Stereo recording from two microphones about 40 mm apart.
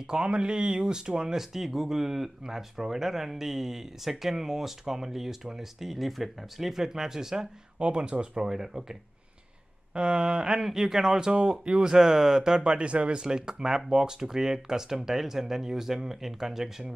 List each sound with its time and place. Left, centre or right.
0.0 s speech: centre
7.8 s speech: right
8.5 s speech: centre
9.9 s speech: right
10.6 s speech: centre